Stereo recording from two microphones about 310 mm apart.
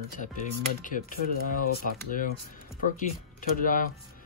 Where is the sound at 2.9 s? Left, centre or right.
Left.